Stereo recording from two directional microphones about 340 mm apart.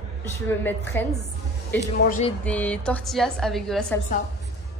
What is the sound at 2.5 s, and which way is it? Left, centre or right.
A woman's voice, centre.